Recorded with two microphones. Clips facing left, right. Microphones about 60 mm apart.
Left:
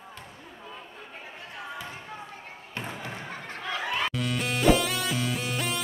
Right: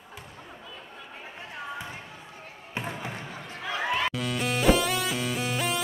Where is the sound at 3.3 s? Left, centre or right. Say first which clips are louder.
Left 2 dB; left.